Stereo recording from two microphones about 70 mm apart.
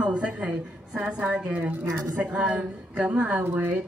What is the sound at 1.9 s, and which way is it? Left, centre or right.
Speech, right.